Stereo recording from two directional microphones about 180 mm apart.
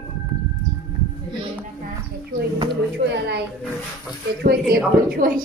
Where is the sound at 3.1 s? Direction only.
70° right (ahead or behind).